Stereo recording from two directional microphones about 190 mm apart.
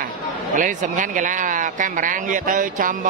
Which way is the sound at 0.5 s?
45° right (ahead or behind).